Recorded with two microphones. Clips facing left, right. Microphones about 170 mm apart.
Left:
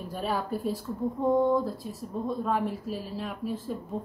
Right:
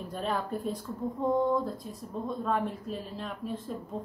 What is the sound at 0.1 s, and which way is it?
Speech, 5° left (ahead or behind).